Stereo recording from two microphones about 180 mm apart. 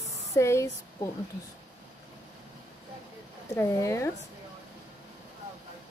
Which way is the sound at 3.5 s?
15° left (ahead or behind).